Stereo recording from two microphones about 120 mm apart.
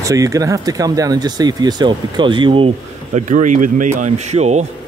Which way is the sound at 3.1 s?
90° right.